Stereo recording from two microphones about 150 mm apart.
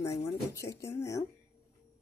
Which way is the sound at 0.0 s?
20° left (ahead or behind).